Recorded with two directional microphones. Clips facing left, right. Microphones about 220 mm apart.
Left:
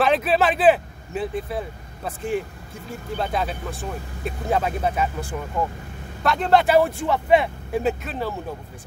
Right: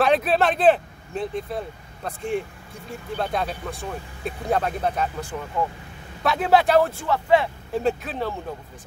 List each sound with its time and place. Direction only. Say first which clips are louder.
0.0 s speech: even; centre (ahead or behind)
6.8 s speech: left 1 dB; 20° left (ahead or behind)
7.8 s speech: right 2 dB; centre (ahead or behind)